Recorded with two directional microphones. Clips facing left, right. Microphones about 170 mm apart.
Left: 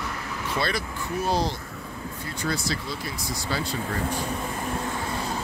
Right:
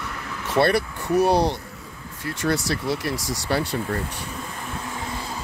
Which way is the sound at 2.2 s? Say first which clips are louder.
Right 6 dB; 80° right.